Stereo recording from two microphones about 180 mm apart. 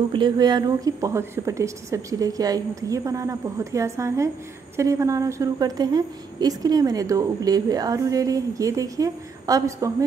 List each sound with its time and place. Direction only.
0.1 s a woman's voice: 25° right (ahead or behind)